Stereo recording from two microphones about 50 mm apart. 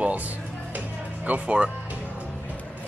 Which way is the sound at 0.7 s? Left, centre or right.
Right.